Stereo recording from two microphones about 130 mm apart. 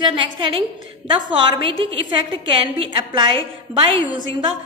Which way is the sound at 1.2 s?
35° right (ahead or behind).